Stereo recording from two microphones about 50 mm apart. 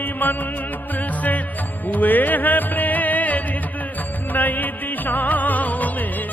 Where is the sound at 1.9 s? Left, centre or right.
Left.